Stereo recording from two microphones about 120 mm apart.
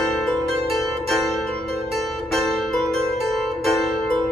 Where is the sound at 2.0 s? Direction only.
5° left (ahead or behind).